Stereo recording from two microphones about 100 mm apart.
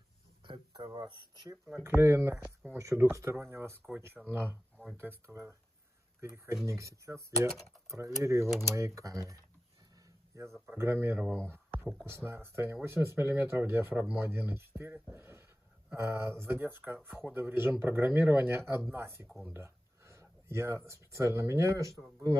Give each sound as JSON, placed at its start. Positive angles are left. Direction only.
{"t": 0.5, "sound": "a sound", "side_deg": -50}
{"t": 1.8, "sound": "speech", "side_deg": -25}
{"t": 3.2, "sound": "speech", "side_deg": -30}
{"t": 19.2, "sound": "speech", "side_deg": 0}
{"t": 19.5, "sound": "speech", "side_deg": -30}